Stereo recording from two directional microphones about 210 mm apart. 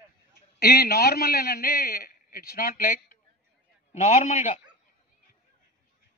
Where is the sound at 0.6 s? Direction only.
45° left (ahead or behind).